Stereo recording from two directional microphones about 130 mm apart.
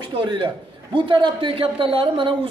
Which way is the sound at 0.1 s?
40° right (ahead or behind).